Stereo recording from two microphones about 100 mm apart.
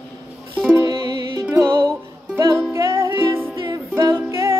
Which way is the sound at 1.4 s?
30° right (ahead or behind).